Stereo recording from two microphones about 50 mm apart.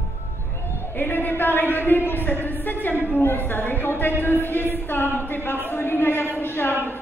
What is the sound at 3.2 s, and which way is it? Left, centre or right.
Music, left.